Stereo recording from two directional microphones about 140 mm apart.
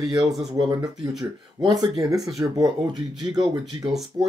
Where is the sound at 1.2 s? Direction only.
30° right (ahead or behind).